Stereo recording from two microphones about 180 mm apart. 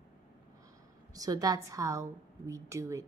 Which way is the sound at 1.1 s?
20° right (ahead or behind).